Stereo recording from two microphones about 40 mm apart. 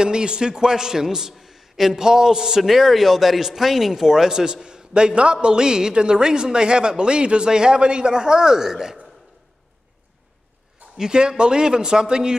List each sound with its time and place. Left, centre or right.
0.0 s a man's voice: right
11.0 s speech: right